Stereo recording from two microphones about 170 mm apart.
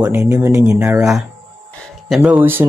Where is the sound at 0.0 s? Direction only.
15° right (ahead or behind).